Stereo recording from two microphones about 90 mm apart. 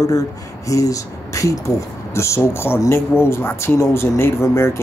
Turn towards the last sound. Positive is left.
turn(degrees=30)  # may be behind; listen again after turning